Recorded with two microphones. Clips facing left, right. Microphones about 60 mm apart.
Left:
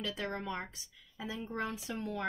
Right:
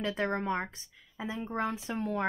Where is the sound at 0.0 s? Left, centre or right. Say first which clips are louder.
Right 7 dB; right.